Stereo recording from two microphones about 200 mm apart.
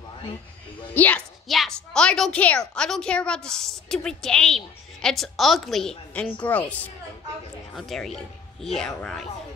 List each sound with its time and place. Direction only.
0.9 s a woman's voice: 5° left (ahead or behind)